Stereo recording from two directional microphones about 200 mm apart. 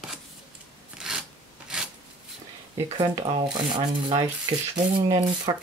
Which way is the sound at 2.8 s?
25° right (ahead or behind).